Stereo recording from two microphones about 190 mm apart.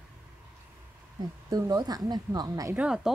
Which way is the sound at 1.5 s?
20° right (ahead or behind).